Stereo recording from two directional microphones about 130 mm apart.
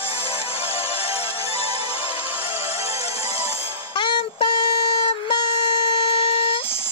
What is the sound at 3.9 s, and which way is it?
Music, 40° left (ahead or behind).